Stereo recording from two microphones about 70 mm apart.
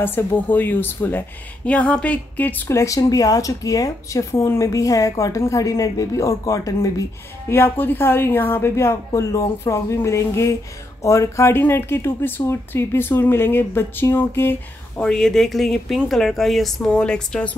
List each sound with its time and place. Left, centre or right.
0.0 s speech: left
2.7 s speech: left
7.4 s speech: left
11.5 s speech: left
15.0 s speech: centre